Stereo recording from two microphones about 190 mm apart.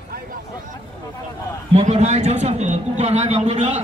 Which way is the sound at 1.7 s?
35° right (ahead or behind).